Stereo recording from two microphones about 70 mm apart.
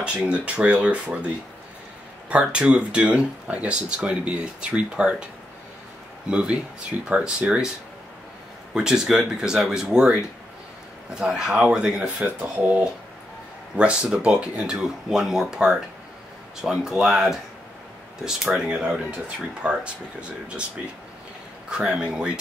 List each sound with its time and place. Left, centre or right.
0.0 s speech: centre
2.2 s speech: centre
6.3 s speech: centre
8.7 s speech: centre
11.1 s speech: centre
12.5 s speech: right
21.6 s speech: centre